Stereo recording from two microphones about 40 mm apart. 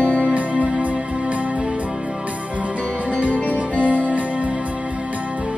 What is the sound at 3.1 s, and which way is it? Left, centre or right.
Music, right.